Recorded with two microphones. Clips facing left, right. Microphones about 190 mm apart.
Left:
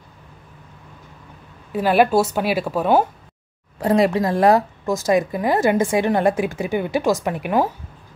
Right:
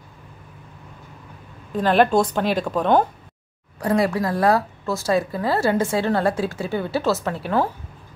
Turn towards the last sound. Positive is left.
turn(degrees=15)  # may be behind; listen again after turning